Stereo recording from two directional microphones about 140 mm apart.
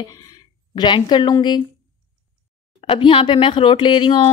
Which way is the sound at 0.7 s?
30° left (ahead or behind).